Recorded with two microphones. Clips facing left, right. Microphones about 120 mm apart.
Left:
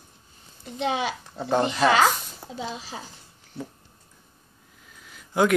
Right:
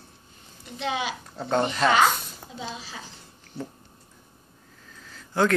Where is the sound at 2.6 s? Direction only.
35° left (ahead or behind).